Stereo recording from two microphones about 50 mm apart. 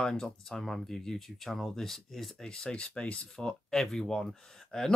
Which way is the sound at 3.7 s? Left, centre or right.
Centre.